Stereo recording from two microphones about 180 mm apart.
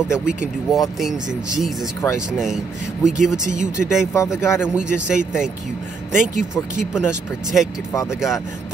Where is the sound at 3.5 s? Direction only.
45° right (ahead or behind).